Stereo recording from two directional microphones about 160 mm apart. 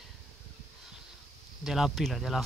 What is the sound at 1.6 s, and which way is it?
Speech, centre (ahead or behind).